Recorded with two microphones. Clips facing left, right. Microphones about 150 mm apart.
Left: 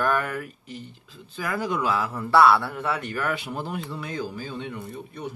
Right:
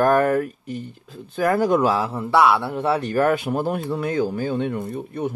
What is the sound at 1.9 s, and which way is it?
Speech, 30° right (ahead or behind).